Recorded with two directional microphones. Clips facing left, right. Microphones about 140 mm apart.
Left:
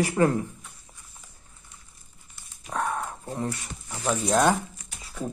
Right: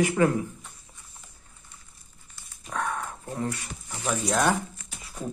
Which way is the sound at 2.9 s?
30° left (ahead or behind).